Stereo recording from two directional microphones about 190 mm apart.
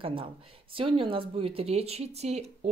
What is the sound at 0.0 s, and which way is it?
A woman's voice, 30° right (ahead or behind).